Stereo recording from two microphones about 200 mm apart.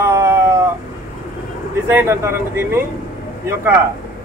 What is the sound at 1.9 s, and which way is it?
Speech, 10° right (ahead or behind).